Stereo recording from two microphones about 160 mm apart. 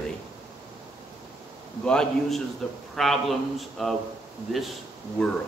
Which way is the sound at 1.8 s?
5° left (ahead or behind).